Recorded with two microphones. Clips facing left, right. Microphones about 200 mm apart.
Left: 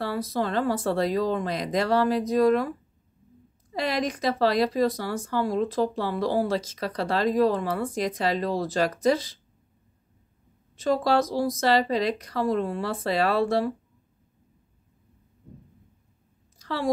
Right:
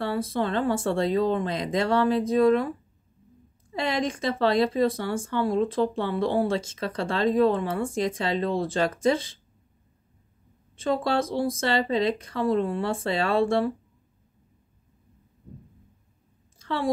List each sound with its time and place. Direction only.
0.0 s speech: 25° right (ahead or behind)
3.7 s speech: 25° right (ahead or behind)
10.8 s speech: 25° right (ahead or behind)
16.5 s a sound: 25° right (ahead or behind)